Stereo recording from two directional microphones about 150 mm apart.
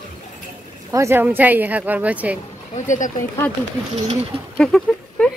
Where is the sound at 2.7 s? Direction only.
55° left (ahead or behind).